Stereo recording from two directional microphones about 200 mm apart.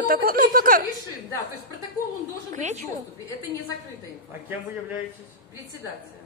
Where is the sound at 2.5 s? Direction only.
35° right (ahead or behind).